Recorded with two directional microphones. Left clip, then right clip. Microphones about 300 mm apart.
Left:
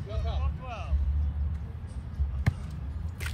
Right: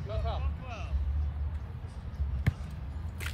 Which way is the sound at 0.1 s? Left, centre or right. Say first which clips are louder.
Right 2 dB; centre.